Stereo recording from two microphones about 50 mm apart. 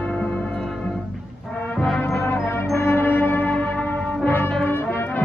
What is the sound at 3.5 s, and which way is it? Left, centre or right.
Music, left.